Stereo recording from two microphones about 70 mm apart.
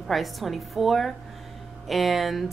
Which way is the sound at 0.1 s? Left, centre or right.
Centre.